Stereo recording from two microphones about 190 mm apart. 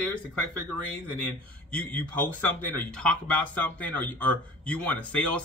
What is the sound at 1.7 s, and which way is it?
A man's voice, 5° left (ahead or behind).